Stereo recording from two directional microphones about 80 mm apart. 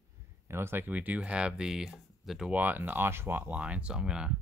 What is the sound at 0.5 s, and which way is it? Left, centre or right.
Speech, right.